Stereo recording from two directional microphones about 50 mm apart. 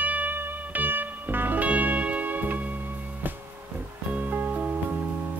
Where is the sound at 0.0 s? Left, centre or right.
Right.